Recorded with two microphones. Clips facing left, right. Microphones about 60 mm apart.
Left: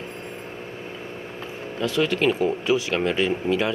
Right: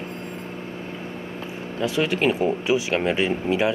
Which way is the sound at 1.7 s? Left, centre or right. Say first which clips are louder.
Even; centre.